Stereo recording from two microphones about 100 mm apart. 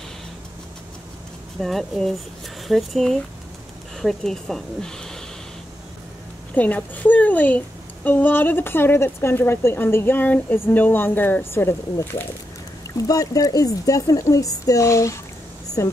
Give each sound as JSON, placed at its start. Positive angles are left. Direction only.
{"t": 1.6, "sound": "speech", "side_deg": 0}
{"t": 6.5, "sound": "a woman's voice", "side_deg": 15}
{"t": 12.9, "sound": "a woman's voice", "side_deg": 35}